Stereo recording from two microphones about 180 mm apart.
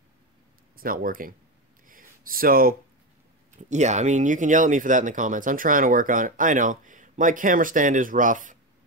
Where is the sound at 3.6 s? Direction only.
40° right (ahead or behind).